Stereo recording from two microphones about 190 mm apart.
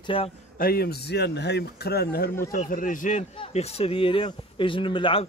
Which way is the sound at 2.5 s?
45° left (ahead or behind).